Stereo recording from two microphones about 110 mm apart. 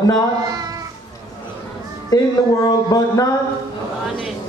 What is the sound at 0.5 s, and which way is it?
Cat, 35° right (ahead or behind).